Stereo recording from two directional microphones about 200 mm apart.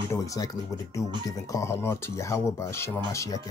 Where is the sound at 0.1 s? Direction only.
15° left (ahead or behind).